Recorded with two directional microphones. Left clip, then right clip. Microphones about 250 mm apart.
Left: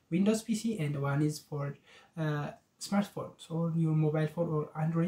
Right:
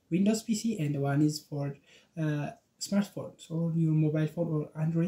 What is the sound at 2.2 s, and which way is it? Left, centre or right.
Speech, left.